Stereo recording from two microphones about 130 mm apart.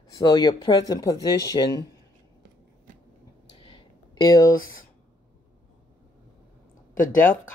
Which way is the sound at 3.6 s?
35° left (ahead or behind).